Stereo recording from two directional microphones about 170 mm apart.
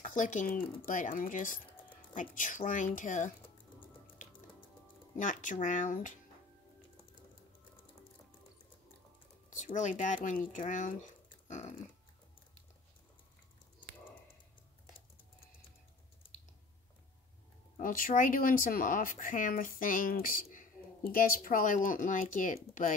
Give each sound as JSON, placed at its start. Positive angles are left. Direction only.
{"t": 0.0, "sound": "speech", "side_deg": 50}
{"t": 5.1, "sound": "speech", "side_deg": 50}
{"t": 9.5, "sound": "speech", "side_deg": 50}
{"t": 11.4, "sound": "dog", "side_deg": 45}
{"t": 17.7, "sound": "speech", "side_deg": 55}